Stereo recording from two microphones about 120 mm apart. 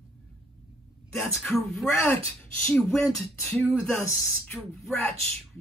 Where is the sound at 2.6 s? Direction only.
5° left (ahead or behind).